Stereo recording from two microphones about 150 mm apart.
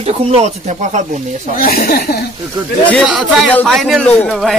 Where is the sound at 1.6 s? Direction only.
75° left (ahead or behind).